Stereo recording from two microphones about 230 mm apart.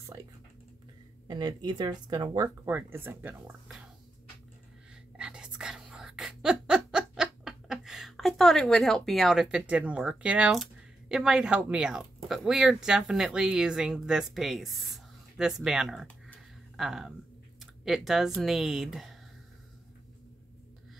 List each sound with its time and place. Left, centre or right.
1.2 s speech: centre
5.1 s whispering: centre
17.6 s speech: centre